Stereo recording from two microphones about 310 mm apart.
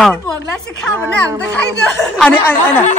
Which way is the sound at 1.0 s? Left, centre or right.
Centre.